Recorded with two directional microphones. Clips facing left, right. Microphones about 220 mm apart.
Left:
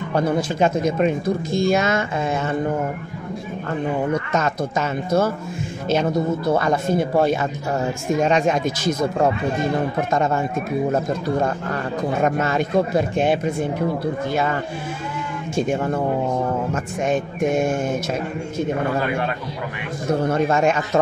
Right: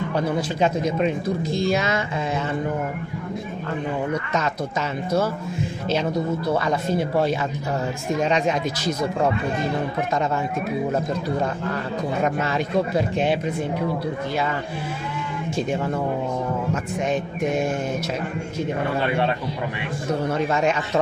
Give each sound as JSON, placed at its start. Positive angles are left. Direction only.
{"t": 0.1, "sound": "speech", "side_deg": 50}
{"t": 4.1, "sound": "speech", "side_deg": 45}
{"t": 10.1, "sound": "speech", "side_deg": 45}
{"t": 12.2, "sound": "speech", "side_deg": 50}
{"t": 19.0, "sound": "a man's voice", "side_deg": -30}
{"t": 20.2, "sound": "speech", "side_deg": 50}